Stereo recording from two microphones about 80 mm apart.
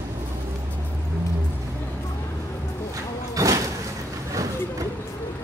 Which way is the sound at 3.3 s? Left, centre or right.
Right.